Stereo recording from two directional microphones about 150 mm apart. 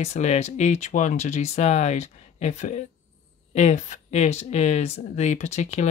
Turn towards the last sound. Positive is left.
turn(degrees=50)  # may be behind; listen again after turning